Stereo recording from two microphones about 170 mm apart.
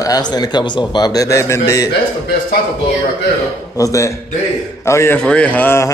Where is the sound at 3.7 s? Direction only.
20° left (ahead or behind).